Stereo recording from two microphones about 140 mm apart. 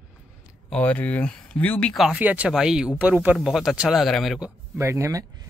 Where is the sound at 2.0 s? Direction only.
5° right (ahead or behind).